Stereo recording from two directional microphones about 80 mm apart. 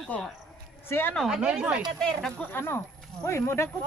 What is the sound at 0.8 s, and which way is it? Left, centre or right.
Speech, left.